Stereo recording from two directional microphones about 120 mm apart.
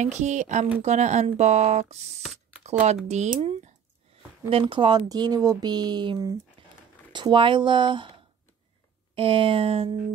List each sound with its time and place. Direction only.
0.0 s speech: 80° right
4.5 s speech: 50° right (ahead or behind)
6.6 s a sound: 50° right (ahead or behind)
7.1 s speech: 40° right (ahead or behind)
9.1 s speech: 50° right (ahead or behind)